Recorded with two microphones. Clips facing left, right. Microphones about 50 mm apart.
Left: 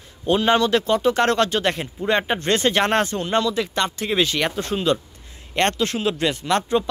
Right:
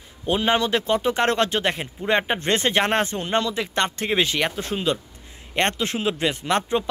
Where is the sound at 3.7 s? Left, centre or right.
Right.